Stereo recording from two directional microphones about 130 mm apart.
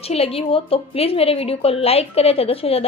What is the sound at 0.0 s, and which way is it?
Speech, 50° left (ahead or behind).